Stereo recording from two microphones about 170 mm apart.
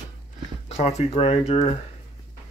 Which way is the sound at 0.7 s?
40° left (ahead or behind).